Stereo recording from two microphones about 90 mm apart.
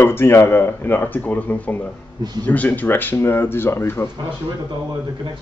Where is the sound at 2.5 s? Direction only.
20° left (ahead or behind).